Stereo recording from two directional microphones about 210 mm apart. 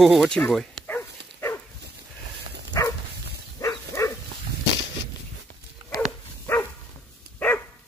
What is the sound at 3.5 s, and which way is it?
Dog, 15° left (ahead or behind).